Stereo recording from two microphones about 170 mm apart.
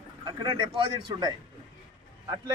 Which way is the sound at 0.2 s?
25° right (ahead or behind).